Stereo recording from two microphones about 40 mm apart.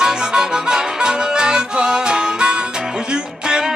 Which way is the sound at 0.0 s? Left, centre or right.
Centre.